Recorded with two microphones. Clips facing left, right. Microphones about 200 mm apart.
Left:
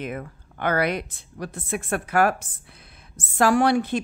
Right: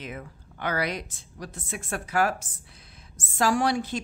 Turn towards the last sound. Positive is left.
turn(degrees=60)  # may be behind; listen again after turning